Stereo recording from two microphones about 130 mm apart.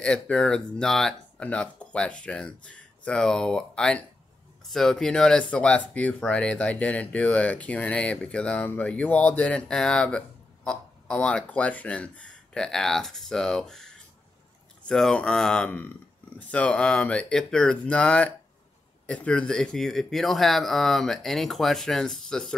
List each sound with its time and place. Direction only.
0.0 s speech: 5° left (ahead or behind)